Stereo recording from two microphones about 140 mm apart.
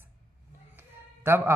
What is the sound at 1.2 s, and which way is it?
Speech, 15° right (ahead or behind).